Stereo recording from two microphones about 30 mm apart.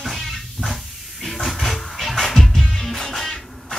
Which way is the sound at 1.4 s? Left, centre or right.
Centre.